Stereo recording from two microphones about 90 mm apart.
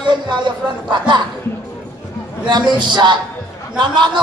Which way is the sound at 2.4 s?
60° right (ahead or behind).